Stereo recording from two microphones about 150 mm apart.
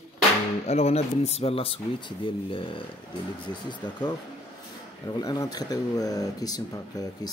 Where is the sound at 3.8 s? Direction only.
30° left (ahead or behind).